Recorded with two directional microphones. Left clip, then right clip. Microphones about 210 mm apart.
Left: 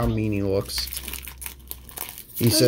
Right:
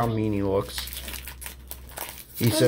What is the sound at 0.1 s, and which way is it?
Speech, 35° left (ahead or behind).